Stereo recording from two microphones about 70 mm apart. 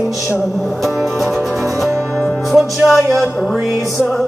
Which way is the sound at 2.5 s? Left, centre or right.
Centre.